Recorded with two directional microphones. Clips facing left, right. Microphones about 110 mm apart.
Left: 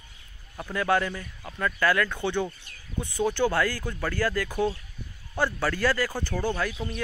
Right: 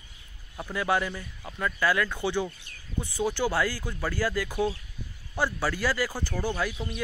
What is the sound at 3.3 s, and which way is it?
Speech, 10° right (ahead or behind).